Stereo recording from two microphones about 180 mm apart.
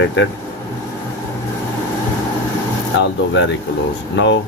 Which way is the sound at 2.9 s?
80° left.